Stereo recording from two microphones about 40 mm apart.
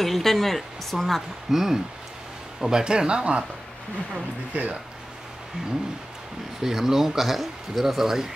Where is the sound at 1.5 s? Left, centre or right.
Centre.